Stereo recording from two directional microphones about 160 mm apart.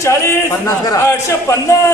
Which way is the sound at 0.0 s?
20° left (ahead or behind).